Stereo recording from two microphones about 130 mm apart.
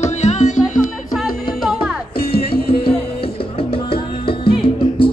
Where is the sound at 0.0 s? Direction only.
65° left (ahead or behind).